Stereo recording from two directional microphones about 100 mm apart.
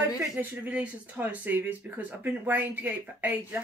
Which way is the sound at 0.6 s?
15° right (ahead or behind).